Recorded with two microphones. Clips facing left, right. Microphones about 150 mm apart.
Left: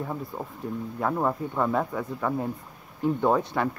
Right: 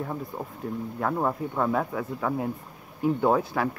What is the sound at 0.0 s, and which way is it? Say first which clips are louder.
Speech: even; centre (ahead or behind).